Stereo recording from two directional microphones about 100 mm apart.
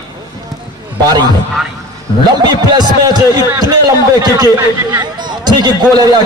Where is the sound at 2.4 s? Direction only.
40° right (ahead or behind).